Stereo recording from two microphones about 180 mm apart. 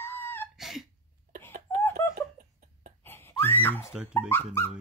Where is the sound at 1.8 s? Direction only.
15° left (ahead or behind).